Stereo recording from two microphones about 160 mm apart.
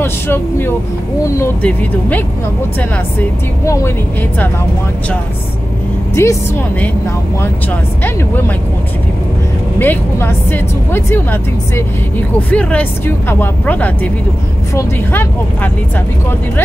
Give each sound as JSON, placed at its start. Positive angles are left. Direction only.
{"t": 0.0, "sound": "speech", "side_deg": 15}
{"t": 3.6, "sound": "speech", "side_deg": 20}
{"t": 6.2, "sound": "speech", "side_deg": 15}
{"t": 9.8, "sound": "speech", "side_deg": 10}
{"t": 12.4, "sound": "speech", "side_deg": 10}